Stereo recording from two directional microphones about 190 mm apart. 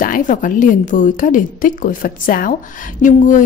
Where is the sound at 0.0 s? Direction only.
45° left (ahead or behind).